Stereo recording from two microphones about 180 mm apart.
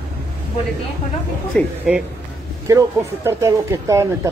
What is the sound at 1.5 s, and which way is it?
Speech, 5° left (ahead or behind).